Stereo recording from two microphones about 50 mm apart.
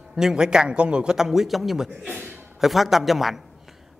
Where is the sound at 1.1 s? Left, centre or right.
Centre.